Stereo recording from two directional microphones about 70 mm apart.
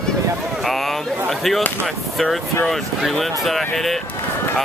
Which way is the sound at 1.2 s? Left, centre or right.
Centre.